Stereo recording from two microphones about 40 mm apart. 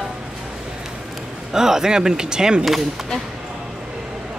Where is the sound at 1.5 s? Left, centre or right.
Centre.